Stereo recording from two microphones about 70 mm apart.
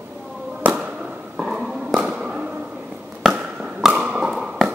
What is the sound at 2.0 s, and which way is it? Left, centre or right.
Music, centre.